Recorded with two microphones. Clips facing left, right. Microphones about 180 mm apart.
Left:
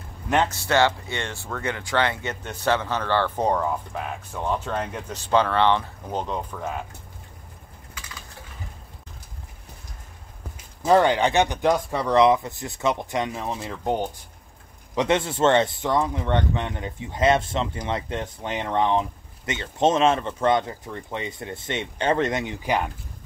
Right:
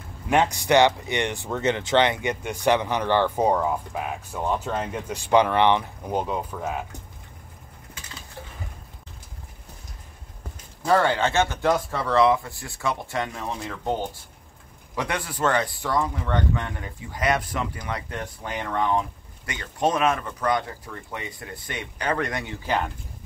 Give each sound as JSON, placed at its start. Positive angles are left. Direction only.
{"t": 0.3, "sound": "speech", "side_deg": -15}
{"t": 10.9, "sound": "speech", "side_deg": 15}